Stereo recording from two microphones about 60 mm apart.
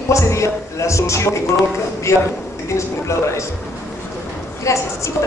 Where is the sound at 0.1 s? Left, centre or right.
Left.